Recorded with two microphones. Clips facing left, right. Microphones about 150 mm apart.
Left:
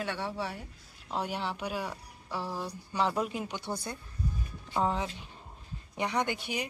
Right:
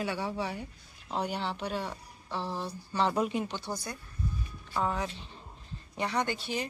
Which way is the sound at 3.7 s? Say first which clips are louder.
Left 1 dB; 25° left (ahead or behind).